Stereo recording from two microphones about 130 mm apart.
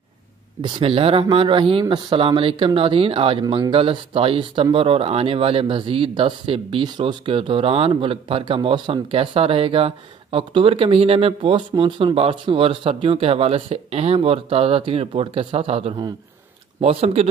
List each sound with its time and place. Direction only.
0.6 s speech: 40° right (ahead or behind)